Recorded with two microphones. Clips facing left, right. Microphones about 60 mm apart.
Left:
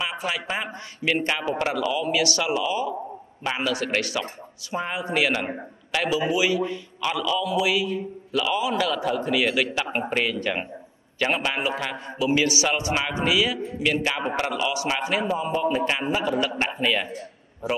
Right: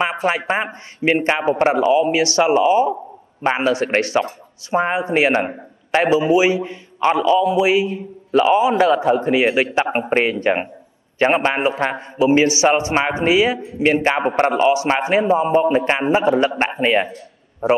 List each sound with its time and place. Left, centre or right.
0.0 s a man's voice: right